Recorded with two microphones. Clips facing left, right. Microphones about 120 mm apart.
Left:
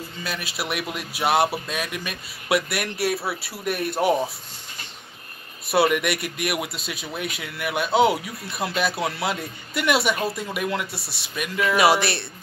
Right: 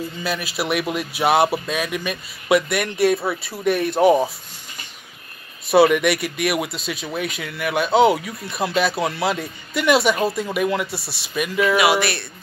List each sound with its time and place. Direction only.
0.2 s speech: centre (ahead or behind)
5.7 s speech: centre (ahead or behind)
11.7 s speech: 35° left (ahead or behind)